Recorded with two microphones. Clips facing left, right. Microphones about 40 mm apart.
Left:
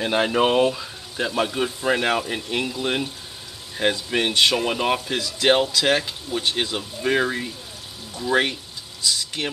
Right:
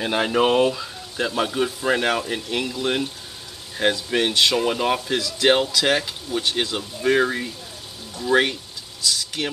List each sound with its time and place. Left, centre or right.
0.0 s speech: centre
4.3 s speech: left
4.6 s speech: centre